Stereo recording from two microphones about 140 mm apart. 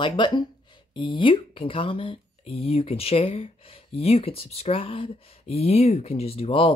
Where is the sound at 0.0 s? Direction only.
35° left (ahead or behind).